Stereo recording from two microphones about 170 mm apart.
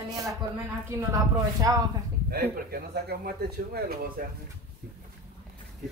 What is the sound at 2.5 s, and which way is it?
Speech, 65° right (ahead or behind).